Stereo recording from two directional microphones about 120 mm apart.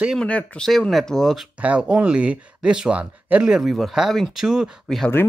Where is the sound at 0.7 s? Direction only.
Centre (ahead or behind).